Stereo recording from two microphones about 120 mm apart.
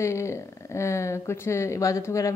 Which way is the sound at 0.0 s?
25° left (ahead or behind).